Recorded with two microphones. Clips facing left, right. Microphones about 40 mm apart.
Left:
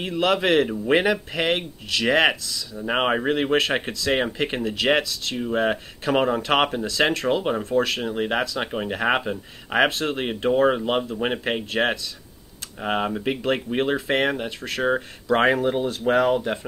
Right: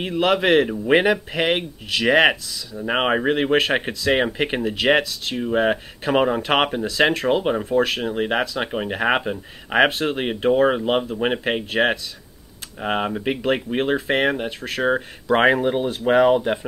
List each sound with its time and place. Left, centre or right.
0.0 s speech: centre